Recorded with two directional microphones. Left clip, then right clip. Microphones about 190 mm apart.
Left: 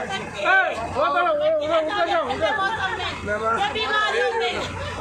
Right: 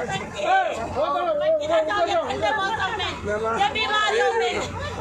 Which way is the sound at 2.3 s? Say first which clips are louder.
Left 1 dB; 10° right (ahead or behind).